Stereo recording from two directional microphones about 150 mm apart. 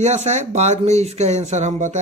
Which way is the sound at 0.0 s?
50° right (ahead or behind).